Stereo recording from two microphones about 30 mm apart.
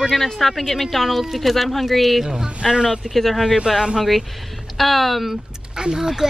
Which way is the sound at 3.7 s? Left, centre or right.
Centre.